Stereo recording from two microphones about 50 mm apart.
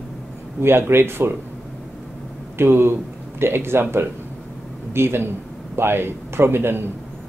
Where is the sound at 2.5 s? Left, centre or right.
Right.